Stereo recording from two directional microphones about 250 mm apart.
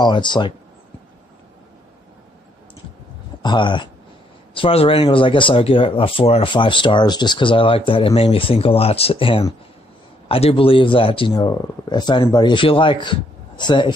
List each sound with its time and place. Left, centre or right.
0.0 s speech: centre
3.4 s speech: centre